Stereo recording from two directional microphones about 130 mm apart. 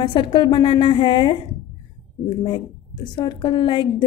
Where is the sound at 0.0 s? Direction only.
40° left (ahead or behind).